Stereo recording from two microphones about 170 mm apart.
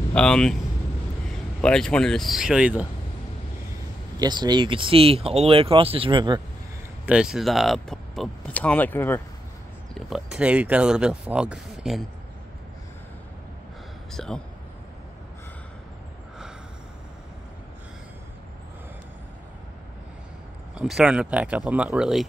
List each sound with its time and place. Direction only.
0.1 s speech: 5° left (ahead or behind)
1.6 s speech: 5° left (ahead or behind)
4.2 s speech: 25° right (ahead or behind)
7.1 s speech: 5° right (ahead or behind); by 9.2 s 10° left (ahead or behind)
9.9 s speech: centre (ahead or behind)
14.1 s speech: 5° left (ahead or behind)
20.7 s speech: 5° right (ahead or behind)